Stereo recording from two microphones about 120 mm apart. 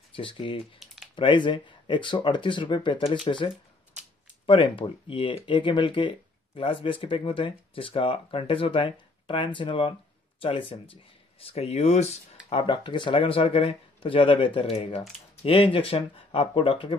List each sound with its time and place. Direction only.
0.1 s speech: 45° left (ahead or behind)
0.8 s typing: centre (ahead or behind)
1.1 s speech: 40° left (ahead or behind); by 12.2 s 65° left (ahead or behind)
12.4 s speech: 45° left (ahead or behind)